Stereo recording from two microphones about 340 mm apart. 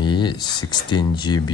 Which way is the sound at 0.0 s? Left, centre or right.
Centre.